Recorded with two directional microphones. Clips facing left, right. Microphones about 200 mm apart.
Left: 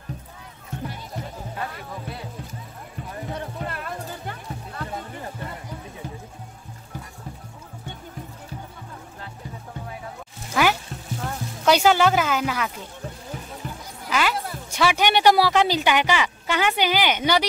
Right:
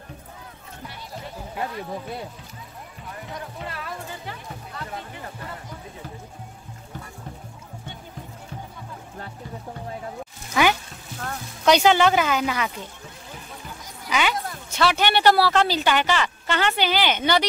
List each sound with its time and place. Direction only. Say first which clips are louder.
3.2 s music: left 4 dB; 35° left (ahead or behind)
3.6 s music: left 2 dB; 50° left (ahead or behind)
10.5 s music: right 1 dB; centre (ahead or behind)
11.2 s speech: right 1 dB; 5° left (ahead or behind)
14.0 s music: even; centre (ahead or behind)
14.7 s speech: left 1 dB; 10° left (ahead or behind)